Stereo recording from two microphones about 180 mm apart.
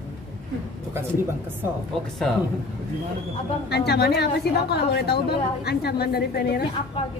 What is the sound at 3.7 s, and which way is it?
A woman's voice, 65° left (ahead or behind).